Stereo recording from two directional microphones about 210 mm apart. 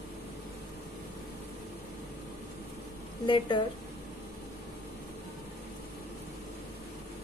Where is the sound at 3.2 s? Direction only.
20° left (ahead or behind).